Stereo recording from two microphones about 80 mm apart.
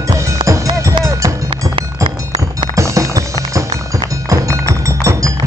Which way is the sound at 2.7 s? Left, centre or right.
Right.